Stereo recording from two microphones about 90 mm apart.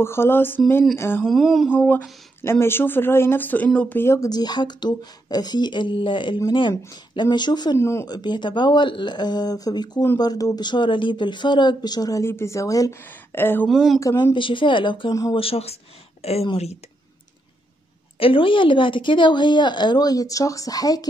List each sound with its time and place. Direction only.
0.0 s speech: 30° left (ahead or behind)
1.2 s a sound: centre (ahead or behind)
1.7 s a sound: 20° left (ahead or behind)
2.4 s speech: 25° left (ahead or behind)
4.0 s speech: 30° left (ahead or behind)
4.3 s speech: 50° left (ahead or behind)
7.7 s speech: 30° left (ahead or behind)
8.1 s a woman's voice: 55° left (ahead or behind); by 12.9 s 40° left (ahead or behind)
13.3 s speech: 25° left (ahead or behind)
13.7 s a sound: centre (ahead or behind)
14.1 s a woman's voice: 60° left (ahead or behind)
15.3 s speech: 90° left
18.2 s a woman's voice: 75° left (ahead or behind); by 21.1 s 45° left (ahead or behind)